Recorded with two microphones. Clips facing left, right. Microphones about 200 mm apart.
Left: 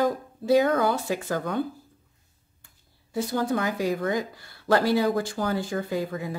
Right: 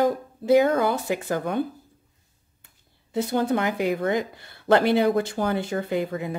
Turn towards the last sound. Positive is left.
turn(degrees=-25)  # may be behind; listen again after turning